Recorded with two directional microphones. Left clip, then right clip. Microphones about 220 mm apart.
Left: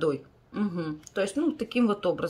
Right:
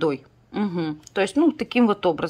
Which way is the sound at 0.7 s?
10° right (ahead or behind).